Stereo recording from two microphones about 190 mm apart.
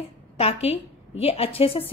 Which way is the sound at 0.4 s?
30° left (ahead or behind).